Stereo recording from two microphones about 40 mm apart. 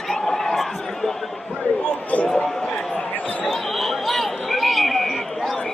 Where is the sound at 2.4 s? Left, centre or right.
Centre.